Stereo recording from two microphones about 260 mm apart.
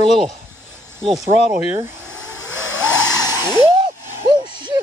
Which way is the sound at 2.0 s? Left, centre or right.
Left.